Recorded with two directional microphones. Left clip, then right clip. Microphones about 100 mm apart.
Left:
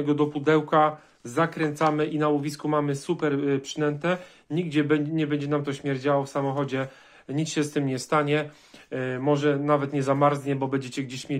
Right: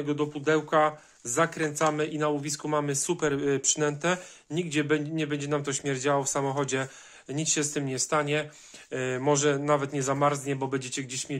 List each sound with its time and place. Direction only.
0.0 s speech: 5° left (ahead or behind)
0.7 s speech: 5° right (ahead or behind)
1.2 s speech: 15° right (ahead or behind); by 4.2 s 35° right (ahead or behind)
4.5 s speech: 15° right (ahead or behind); by 6.9 s 35° right (ahead or behind)
7.2 s speech: 10° right (ahead or behind)
8.9 s speech: 25° right (ahead or behind)
9.2 s speech: 40° right (ahead or behind)
9.7 s speech: 20° right (ahead or behind)